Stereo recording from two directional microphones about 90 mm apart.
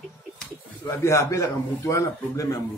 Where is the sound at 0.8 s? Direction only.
30° left (ahead or behind).